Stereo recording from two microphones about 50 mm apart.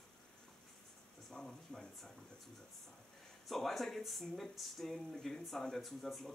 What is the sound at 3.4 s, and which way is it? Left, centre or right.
Speech, centre.